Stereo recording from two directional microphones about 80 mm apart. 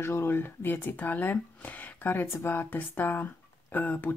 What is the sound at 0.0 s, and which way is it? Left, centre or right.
Speech, left.